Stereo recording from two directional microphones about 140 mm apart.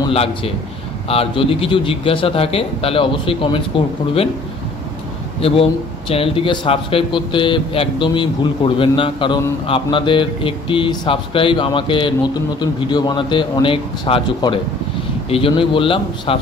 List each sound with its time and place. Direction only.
0.1 s a man's voice: 45° left (ahead or behind)
5.4 s a man's voice: 45° left (ahead or behind)